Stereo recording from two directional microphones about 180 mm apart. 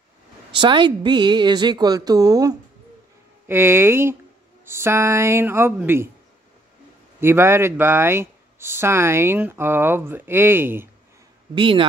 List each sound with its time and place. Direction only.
0.6 s a woman's voice: 25° right (ahead or behind)
7.2 s speech: 15° right (ahead or behind)
11.5 s a woman's voice: 30° right (ahead or behind)